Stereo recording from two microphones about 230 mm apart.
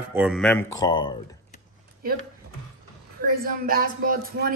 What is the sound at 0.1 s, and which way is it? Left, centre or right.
Speech, centre.